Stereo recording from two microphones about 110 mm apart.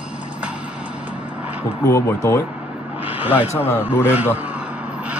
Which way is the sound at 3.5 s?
20° left (ahead or behind).